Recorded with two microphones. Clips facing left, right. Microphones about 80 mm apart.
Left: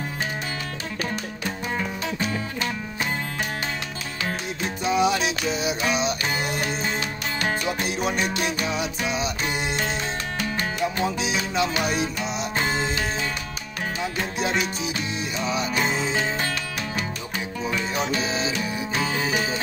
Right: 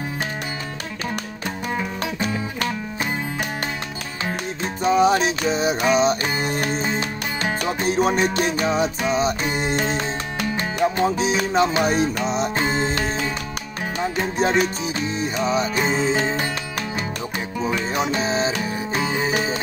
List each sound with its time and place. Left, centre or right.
4.8 s music: right
11.0 s music: right
14.4 s music: right
18.1 s music: right
18.9 s music: right